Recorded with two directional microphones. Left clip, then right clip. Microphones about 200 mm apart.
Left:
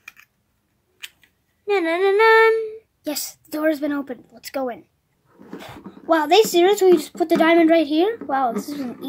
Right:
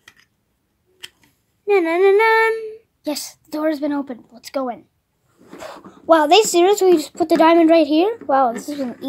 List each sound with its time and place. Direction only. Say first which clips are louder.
1.7 s speech: right 4 dB; 15° right (ahead or behind)